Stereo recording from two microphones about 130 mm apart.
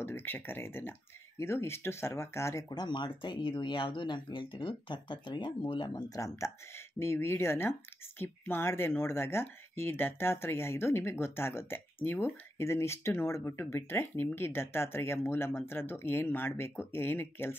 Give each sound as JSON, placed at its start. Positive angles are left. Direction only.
{"t": 0.0, "sound": "speech", "side_deg": 15}
{"t": 2.7, "sound": "speech", "side_deg": 35}